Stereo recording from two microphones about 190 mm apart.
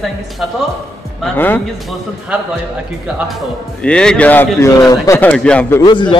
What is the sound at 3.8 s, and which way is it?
Speech, 5° left (ahead or behind).